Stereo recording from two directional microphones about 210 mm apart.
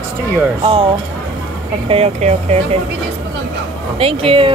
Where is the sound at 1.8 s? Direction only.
30° right (ahead or behind).